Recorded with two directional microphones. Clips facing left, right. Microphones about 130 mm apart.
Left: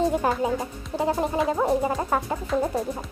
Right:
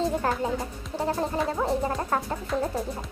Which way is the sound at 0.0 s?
15° left (ahead or behind).